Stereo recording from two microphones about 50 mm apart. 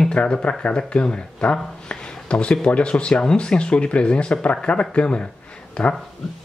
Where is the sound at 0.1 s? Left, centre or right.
Left.